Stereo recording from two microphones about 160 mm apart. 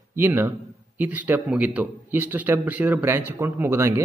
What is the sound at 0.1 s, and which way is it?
A man's voice, 15° right (ahead or behind).